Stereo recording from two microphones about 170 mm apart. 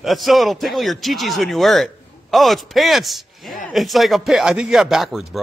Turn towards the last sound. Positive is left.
turn(degrees=0)  # may be behind; listen again after turning